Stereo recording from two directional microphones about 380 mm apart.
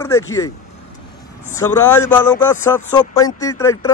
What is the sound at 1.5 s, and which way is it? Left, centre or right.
Speech, centre.